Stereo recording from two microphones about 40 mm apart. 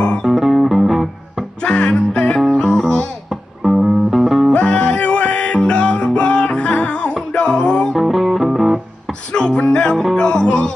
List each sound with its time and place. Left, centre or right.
0.2 s music: centre
1.6 s music: left
3.6 s music: centre
4.5 s music: left
7.9 s music: centre
9.3 s music: left